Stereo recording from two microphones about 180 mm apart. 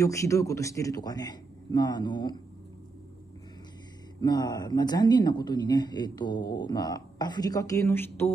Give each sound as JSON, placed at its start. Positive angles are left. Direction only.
{"t": 0.0, "sound": "speech", "side_deg": 15}
{"t": 4.2, "sound": "speech", "side_deg": 20}